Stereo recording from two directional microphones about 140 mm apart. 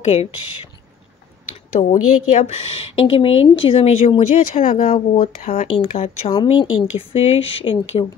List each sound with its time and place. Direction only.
0.0 s speech: 50° left (ahead or behind)
1.8 s a woman's voice: 55° left (ahead or behind); by 5.3 s 40° left (ahead or behind)
5.4 s a woman's voice: 55° left (ahead or behind)
6.3 s speech: 35° left (ahead or behind)
7.1 s a woman's voice: 45° left (ahead or behind)